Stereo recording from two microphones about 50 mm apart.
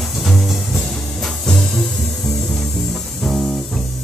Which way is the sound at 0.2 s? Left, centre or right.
Centre.